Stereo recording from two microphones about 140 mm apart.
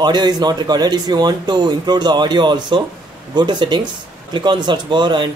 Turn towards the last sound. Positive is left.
turn(degrees=-30)  # may be behind; listen again after turning